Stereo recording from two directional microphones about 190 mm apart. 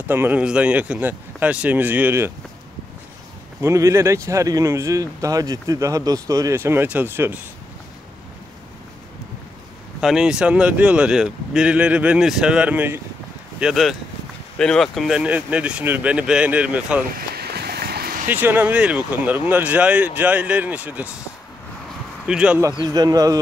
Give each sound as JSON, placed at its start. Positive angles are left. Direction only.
{"t": 0.0, "sound": "speech", "side_deg": -10}
{"t": 3.6, "sound": "speech", "side_deg": -15}
{"t": 9.9, "sound": "speech", "side_deg": -5}
{"t": 17.3, "sound": "a sound", "side_deg": -55}
{"t": 18.3, "sound": "speech", "side_deg": -10}
{"t": 22.2, "sound": "speech", "side_deg": -5}
{"t": 22.8, "sound": "speech", "side_deg": -20}